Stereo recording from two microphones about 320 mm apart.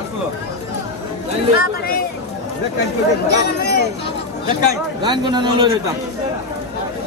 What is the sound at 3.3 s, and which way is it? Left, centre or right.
Speech, left.